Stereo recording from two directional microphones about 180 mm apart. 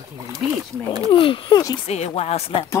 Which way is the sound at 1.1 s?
30° left (ahead or behind).